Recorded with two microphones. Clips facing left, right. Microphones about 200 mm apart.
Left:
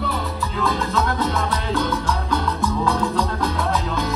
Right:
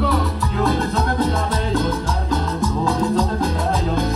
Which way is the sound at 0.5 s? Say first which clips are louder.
Right 4 dB; 50° right (ahead or behind).